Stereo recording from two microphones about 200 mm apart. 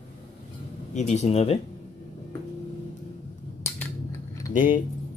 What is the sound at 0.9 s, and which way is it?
Speech, 35° left (ahead or behind).